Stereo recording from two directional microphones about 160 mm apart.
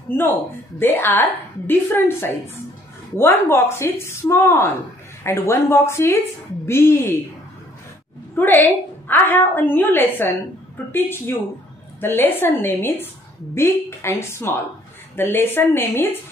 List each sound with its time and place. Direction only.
0.1 s a woman's voice: 15° left (ahead or behind)
8.4 s a woman's voice: 10° left (ahead or behind)